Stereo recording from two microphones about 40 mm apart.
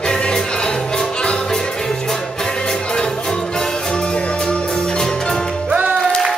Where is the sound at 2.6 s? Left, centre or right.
Left.